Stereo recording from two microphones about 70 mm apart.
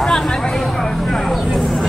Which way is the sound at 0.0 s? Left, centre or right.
Centre.